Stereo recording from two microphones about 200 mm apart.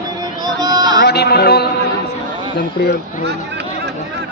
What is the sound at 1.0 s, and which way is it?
Music, 55° left (ahead or behind).